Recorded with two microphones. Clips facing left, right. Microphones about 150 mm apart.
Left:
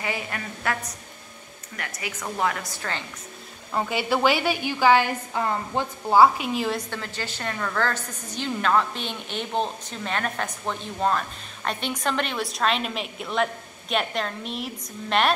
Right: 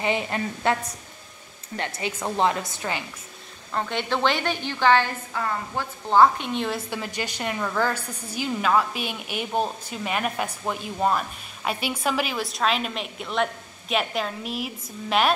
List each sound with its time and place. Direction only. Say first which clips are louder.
0.0 s a woman's voice: right 5 dB; 25° right (ahead or behind)
1.8 s a woman's voice: right 5 dB; 25° right (ahead or behind)
3.7 s a woman's voice: left 2 dB; 10° left (ahead or behind)
5.3 s a woman's voice: left 3 dB; 20° left (ahead or behind)
6.0 s a woman's voice: even; 5° left (ahead or behind)
6.9 s a woman's voice: right 3 dB; 15° right (ahead or behind)